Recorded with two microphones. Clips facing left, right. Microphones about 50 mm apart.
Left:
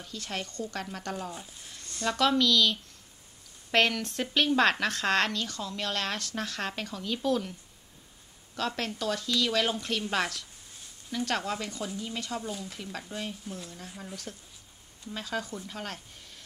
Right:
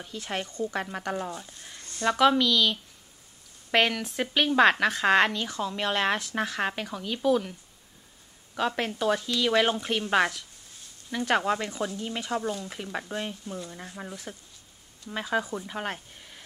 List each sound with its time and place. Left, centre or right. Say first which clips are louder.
0.0 s a woman's voice: right 3 dB; right
1.9 s a sound: right 5 dB; right
2.1 s a woman's voice: right 2 dB; centre
8.5 s speech: right 4 dB; centre